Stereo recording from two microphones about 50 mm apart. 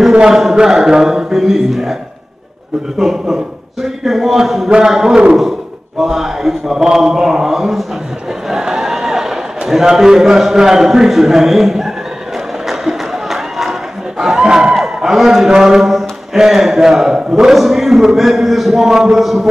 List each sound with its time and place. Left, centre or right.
0.3 s a man's voice: centre
3.0 s a man's voice: centre
4.6 s mantra: centre
8.5 s a man's voice: centre
12.6 s a sound: centre
17.6 s a man's voice: centre